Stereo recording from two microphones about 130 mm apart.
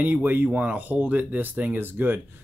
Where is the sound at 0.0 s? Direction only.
15° right (ahead or behind).